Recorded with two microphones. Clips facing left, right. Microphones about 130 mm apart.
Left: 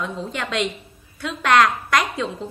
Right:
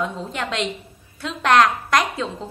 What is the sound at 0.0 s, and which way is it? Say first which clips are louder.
A woman's voice: right 1 dB; 30° right (ahead or behind).